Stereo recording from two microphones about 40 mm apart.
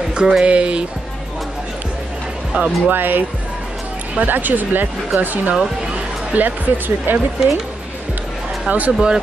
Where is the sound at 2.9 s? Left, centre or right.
Right.